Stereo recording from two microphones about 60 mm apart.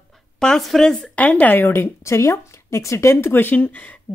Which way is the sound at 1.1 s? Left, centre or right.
Left.